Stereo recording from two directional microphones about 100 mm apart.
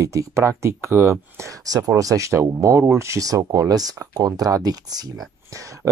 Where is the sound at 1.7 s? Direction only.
35° right (ahead or behind).